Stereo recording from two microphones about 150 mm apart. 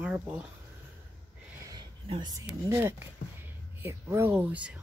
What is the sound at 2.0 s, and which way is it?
Speech, 30° right (ahead or behind).